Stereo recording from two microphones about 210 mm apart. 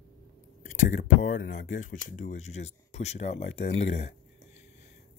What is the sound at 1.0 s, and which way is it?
Speech, 40° left (ahead or behind).